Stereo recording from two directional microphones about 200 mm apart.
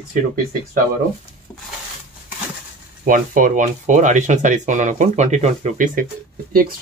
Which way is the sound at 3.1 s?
40° right (ahead or behind).